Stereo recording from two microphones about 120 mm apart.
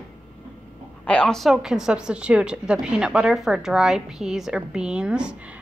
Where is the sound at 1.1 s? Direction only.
5° left (ahead or behind).